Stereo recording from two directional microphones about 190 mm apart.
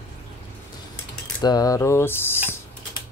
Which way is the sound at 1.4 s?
20° left (ahead or behind).